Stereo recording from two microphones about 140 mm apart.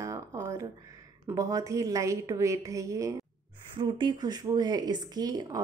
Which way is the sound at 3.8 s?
35° right (ahead or behind).